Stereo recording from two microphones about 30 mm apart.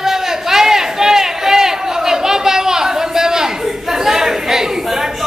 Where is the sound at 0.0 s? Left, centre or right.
Centre.